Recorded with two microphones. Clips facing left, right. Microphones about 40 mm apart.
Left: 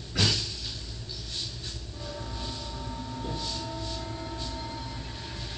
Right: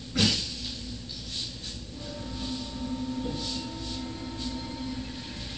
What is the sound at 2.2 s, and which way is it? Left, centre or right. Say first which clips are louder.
Vehicle: right 2 dB; left.